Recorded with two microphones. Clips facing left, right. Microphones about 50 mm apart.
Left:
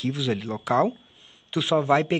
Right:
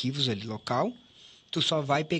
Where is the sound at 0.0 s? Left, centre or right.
Centre.